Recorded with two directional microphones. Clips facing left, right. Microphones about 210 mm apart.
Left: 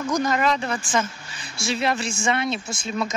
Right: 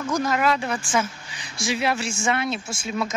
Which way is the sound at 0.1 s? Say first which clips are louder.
Even; 5° right (ahead or behind).